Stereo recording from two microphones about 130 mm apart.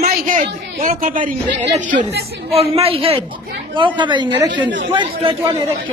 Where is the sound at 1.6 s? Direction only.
75° right (ahead or behind).